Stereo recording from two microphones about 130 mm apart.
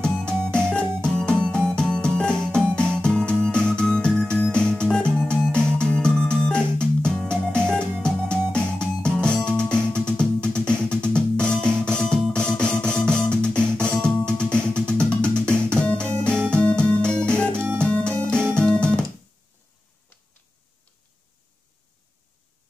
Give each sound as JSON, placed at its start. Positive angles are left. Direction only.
{"t": 0.3, "sound": "music", "side_deg": 5}
{"t": 17.6, "sound": "music", "side_deg": -15}
{"t": 17.8, "sound": "music", "side_deg": 10}